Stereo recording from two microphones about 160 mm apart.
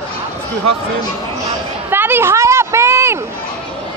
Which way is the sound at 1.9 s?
15° right (ahead or behind).